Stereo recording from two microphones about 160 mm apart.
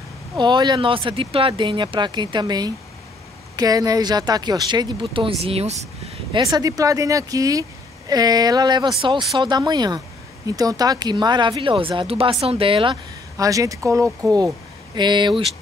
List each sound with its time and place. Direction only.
0.4 s speech: 30° right (ahead or behind)
5.1 s speech: 35° right (ahead or behind)
6.3 s speech: 25° right (ahead or behind)